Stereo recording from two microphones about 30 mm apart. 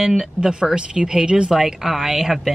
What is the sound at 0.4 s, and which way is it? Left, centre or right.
Speech, right.